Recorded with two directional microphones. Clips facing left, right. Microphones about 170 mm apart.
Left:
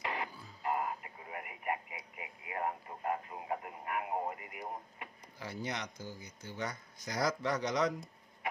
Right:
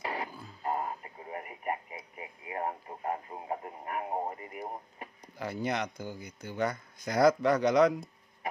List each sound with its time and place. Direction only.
0.0 s organ: 35° right (ahead or behind)
0.7 s radio: 30° right (ahead or behind)
5.4 s speech: 55° right (ahead or behind)